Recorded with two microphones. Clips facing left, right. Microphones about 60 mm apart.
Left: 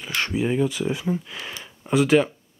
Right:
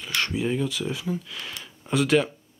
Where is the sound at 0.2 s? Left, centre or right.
Left.